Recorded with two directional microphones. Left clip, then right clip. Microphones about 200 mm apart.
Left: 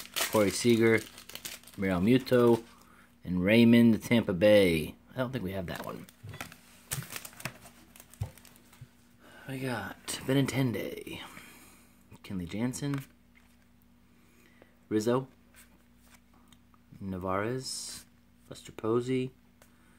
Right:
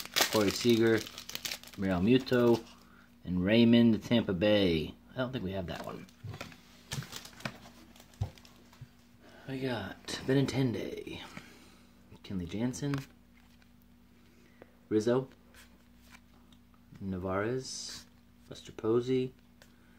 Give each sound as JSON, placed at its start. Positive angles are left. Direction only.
{"t": 0.3, "sound": "speech", "side_deg": 35}
{"t": 1.2, "sound": "crumpling", "side_deg": -25}
{"t": 1.8, "sound": "speech", "side_deg": 35}
{"t": 6.9, "sound": "typewriter", "side_deg": 50}
{"t": 9.5, "sound": "speech", "side_deg": 25}
{"t": 14.9, "sound": "speech", "side_deg": 20}
{"t": 17.0, "sound": "speech", "side_deg": 20}
{"t": 18.6, "sound": "speech", "side_deg": 20}